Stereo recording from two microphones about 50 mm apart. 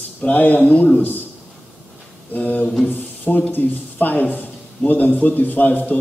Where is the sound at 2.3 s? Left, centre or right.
Left.